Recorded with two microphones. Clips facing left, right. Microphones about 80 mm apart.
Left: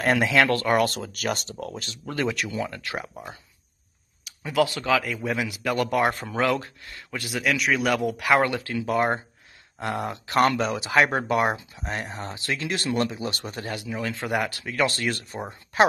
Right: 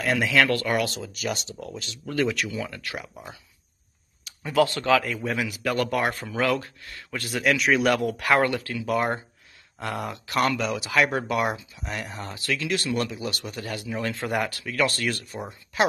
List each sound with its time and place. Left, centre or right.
0.0 s speech: left
0.3 s speech: left
0.8 s speech: left
2.0 s speech: left
4.2 s speech: centre
5.3 s speech: centre
7.1 s speech: centre
8.4 s speech: left
14.1 s speech: centre; by 15.9 s left